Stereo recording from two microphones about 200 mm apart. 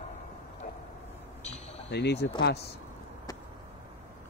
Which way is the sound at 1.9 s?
55° left (ahead or behind).